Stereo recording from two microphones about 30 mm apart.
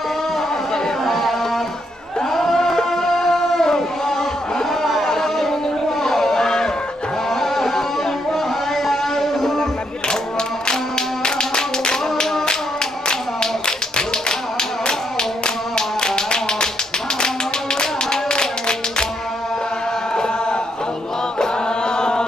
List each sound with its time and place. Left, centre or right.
1.0 s a sound: centre
2.3 s music: centre
6.0 s a sound: centre
7.2 s music: centre
10.7 s clapping: left
14.9 s tap: left
17.7 s clapping: left
21.4 s chant: left